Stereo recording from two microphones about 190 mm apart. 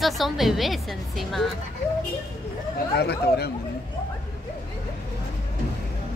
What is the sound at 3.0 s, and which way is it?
Speech, 60° left (ahead or behind).